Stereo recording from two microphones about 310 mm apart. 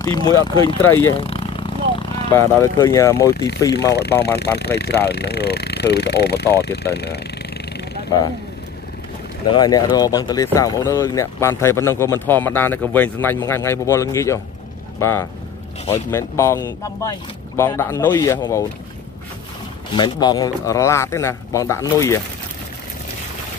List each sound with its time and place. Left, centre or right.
0.0 s speech: centre
1.2 s vehicle: centre
4.2 s speech: left
9.5 s speech: centre
19.9 s speech: centre